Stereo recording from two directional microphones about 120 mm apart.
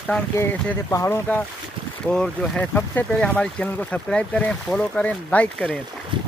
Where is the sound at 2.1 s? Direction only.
10° left (ahead or behind).